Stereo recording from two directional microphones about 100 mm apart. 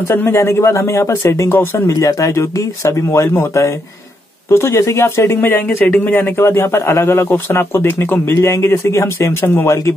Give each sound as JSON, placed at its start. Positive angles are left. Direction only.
{"t": 0.1, "sound": "speech", "side_deg": 25}